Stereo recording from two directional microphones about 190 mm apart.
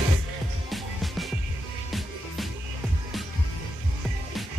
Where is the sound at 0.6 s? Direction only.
Centre (ahead or behind).